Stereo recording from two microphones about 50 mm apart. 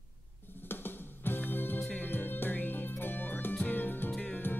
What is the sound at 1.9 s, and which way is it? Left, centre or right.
Music, left.